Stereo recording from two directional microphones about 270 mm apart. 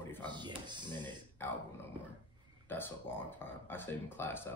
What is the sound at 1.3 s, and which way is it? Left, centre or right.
Speech, centre.